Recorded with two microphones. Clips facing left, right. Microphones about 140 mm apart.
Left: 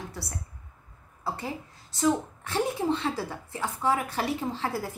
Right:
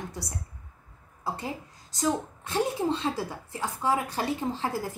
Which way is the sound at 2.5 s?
20° right (ahead or behind).